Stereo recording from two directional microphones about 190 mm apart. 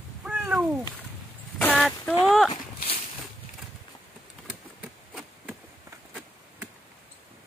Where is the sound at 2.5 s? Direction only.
30° left (ahead or behind).